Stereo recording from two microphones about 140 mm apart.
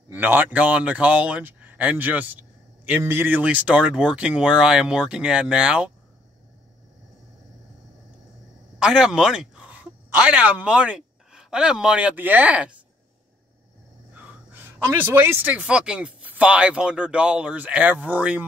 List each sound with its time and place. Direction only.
0.1 s a man's voice: 15° right (ahead or behind)
8.7 s speech: 5° right (ahead or behind)
14.1 s speech: 10° right (ahead or behind)